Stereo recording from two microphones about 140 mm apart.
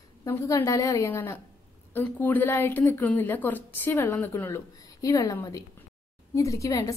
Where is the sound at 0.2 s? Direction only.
20° left (ahead or behind).